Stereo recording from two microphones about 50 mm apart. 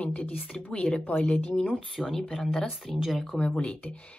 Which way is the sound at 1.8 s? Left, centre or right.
Centre.